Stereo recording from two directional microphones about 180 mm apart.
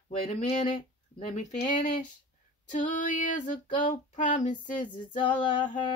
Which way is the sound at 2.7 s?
45° left (ahead or behind).